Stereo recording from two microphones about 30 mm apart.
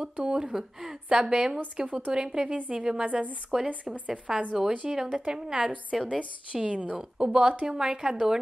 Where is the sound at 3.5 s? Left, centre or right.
Centre.